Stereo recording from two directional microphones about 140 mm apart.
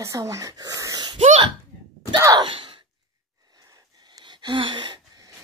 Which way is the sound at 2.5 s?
40° right (ahead or behind).